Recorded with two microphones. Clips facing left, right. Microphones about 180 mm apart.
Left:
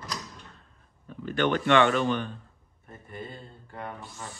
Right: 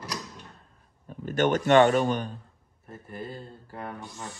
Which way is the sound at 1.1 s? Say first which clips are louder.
Right 2 dB; 45° right (ahead or behind).